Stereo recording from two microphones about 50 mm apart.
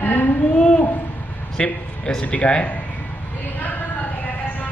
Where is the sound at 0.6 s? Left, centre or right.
Left.